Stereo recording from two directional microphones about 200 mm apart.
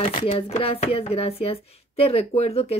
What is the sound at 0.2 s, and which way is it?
Speech, 30° left (ahead or behind).